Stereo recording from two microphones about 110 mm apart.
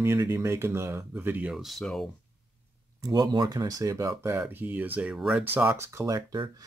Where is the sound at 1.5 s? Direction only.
Centre (ahead or behind).